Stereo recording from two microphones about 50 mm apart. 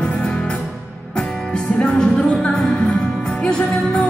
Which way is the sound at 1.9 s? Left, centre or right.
Left.